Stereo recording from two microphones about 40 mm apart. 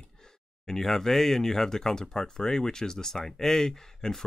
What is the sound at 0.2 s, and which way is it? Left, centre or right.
Speech, centre.